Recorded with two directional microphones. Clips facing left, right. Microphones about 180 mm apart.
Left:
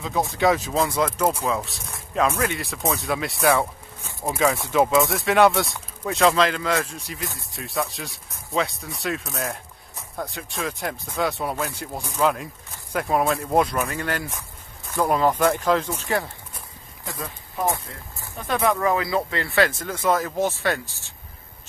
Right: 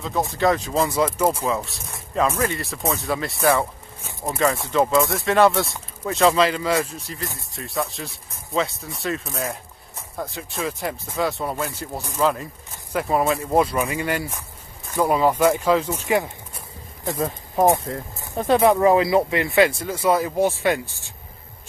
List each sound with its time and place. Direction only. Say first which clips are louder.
0.0 s speech: even; centre (ahead or behind)
17.9 s speech: right 9 dB; 40° right (ahead or behind)
18.6 s speech: right 5 dB; 25° right (ahead or behind)
20.8 s speech: right 4 dB; 40° left (ahead or behind)